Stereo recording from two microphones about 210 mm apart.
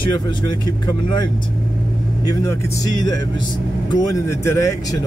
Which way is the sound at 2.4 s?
15° left (ahead or behind).